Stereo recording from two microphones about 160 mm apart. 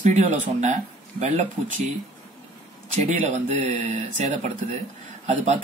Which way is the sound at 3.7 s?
45° right (ahead or behind).